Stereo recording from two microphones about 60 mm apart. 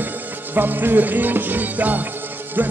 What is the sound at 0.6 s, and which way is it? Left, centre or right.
Music, right.